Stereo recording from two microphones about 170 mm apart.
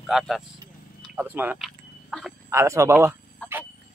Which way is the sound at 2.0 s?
Centre (ahead or behind).